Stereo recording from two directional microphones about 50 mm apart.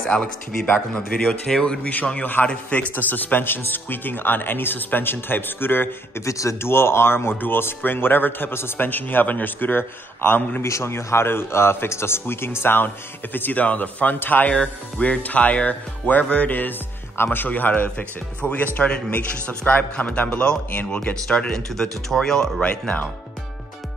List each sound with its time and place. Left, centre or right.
0.0 s speech: centre
2.4 s a man's voice: left
6.2 s speech: left
6.6 s speech: left
10.6 s speech: left
14.5 s a man's voice: left
18.4 s speech: left
21.1 s speech: centre
22.6 s speech: left